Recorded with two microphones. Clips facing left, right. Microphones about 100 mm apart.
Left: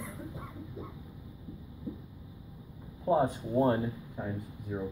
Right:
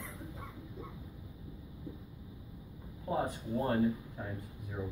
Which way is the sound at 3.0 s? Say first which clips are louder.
Left 7 dB; 25° left (ahead or behind).